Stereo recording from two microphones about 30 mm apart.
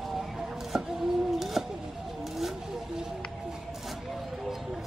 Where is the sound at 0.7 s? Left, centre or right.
Centre.